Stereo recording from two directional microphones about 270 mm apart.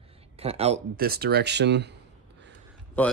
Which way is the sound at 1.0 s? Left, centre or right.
Right.